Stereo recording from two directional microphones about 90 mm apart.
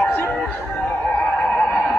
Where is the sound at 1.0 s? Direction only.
15° left (ahead or behind).